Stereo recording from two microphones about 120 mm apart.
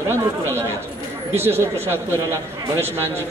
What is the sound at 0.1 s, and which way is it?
A man's voice, 20° right (ahead or behind).